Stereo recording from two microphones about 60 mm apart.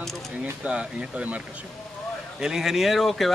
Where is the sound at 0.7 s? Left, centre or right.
Centre.